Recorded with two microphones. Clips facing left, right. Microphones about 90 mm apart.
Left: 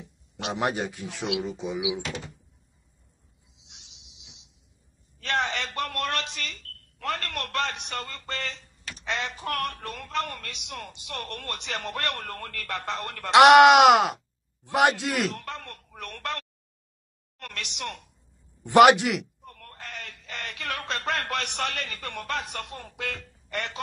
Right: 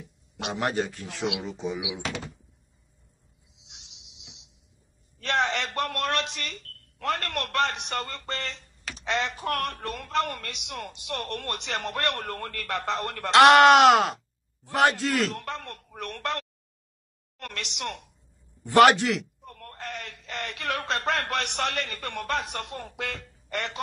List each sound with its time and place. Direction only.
0.6 s speech: 15° left (ahead or behind)
1.6 s speech: centre (ahead or behind)
3.5 s a sound: 65° right (ahead or behind)
7.1 s speech: 50° right (ahead or behind)
13.3 s speech: 15° left (ahead or behind)
15.3 s a woman's voice: 55° right (ahead or behind)
18.6 s speech: 15° left (ahead or behind)
19.4 s speech: 45° right (ahead or behind)